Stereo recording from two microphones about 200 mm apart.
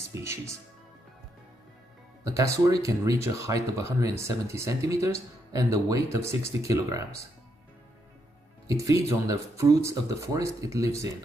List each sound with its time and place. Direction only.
0.1 s speech: 15° right (ahead or behind)
2.2 s speech: 15° right (ahead or behind)
8.6 s speech: 15° right (ahead or behind)